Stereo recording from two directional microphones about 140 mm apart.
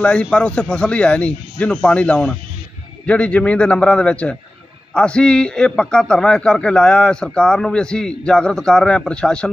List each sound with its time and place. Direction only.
0.0 s a man's voice: 5° left (ahead or behind)